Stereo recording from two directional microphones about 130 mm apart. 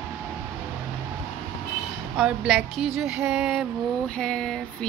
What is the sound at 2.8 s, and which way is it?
Music, 5° right (ahead or behind).